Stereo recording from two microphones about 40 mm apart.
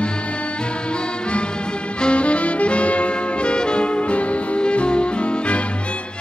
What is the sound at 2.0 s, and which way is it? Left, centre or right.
Music, left.